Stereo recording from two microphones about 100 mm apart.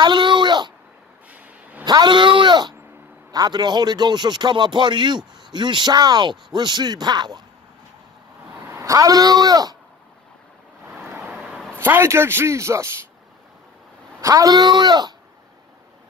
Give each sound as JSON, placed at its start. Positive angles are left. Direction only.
{"t": 0.0, "sound": "a sound", "side_deg": -50}
{"t": 1.3, "sound": "a sound", "side_deg": -15}
{"t": 1.9, "sound": "a man's voice", "side_deg": -50}
{"t": 8.6, "sound": "speech", "side_deg": -35}
{"t": 11.0, "sound": "vehicle", "side_deg": -25}
{"t": 11.8, "sound": "a man's voice", "side_deg": -25}
{"t": 14.2, "sound": "a man's voice", "side_deg": -35}